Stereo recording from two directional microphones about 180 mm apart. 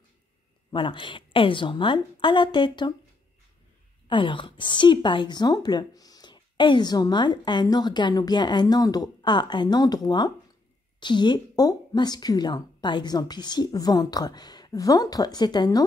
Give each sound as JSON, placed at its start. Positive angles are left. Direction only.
{"t": 0.7, "sound": "a woman's voice", "side_deg": 25}
{"t": 4.1, "sound": "a woman's voice", "side_deg": 30}